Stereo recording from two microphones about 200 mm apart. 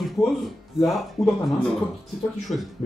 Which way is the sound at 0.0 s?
Centre (ahead or behind).